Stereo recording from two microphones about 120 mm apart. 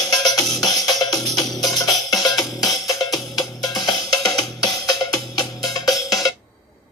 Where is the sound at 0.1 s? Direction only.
35° left (ahead or behind).